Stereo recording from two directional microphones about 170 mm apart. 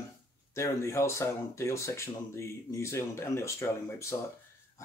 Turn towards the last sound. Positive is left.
turn(degrees=15)  # may be behind; listen again after turning